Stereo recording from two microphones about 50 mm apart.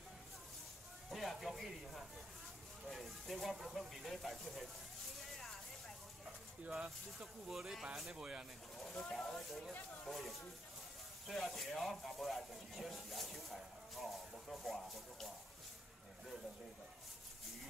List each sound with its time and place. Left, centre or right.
1.1 s snake: centre
2.9 s speech: centre
5.2 s vehicle: centre
7.2 s speech: centre
8.1 s speech: centre
9.1 s speech: centre